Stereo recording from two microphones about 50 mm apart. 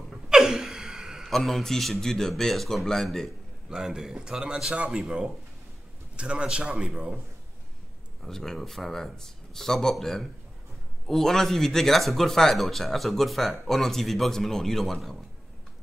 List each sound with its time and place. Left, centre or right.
0.3 s gasp: centre
1.3 s speech: centre
3.7 s speech: centre
6.1 s a man's voice: right
8.2 s speech: centre